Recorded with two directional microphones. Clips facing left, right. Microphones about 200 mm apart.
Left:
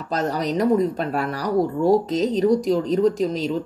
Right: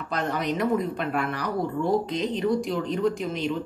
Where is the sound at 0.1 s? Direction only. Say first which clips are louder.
Left 4 dB; 40° left (ahead or behind).